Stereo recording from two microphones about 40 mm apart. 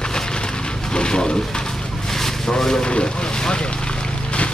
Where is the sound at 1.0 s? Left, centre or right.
Centre.